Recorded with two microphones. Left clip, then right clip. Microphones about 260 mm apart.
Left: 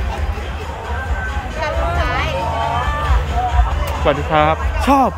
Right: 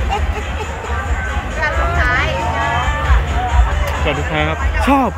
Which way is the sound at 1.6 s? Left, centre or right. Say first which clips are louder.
Right 3 dB; left.